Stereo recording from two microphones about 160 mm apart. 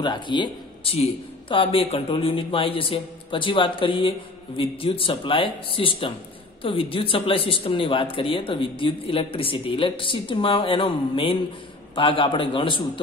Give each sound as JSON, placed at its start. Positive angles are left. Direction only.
{"t": 0.0, "sound": "speech", "side_deg": 30}